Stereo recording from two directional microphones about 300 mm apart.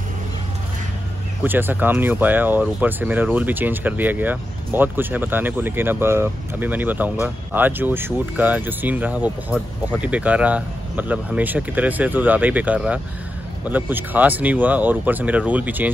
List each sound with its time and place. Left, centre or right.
1.4 s speech: centre